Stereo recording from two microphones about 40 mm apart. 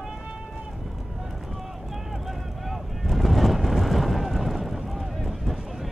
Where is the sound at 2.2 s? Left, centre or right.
Centre.